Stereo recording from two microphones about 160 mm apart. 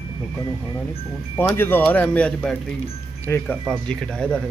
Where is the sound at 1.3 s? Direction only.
15° left (ahead or behind).